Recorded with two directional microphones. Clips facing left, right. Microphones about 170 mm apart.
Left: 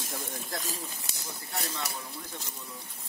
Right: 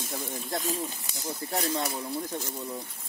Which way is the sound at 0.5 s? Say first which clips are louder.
Right 6 dB; 25° right (ahead or behind).